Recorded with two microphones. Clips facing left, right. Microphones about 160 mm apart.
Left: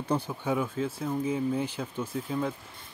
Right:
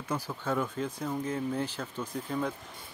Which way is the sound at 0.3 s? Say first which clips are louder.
Left 2 dB; 15° left (ahead or behind).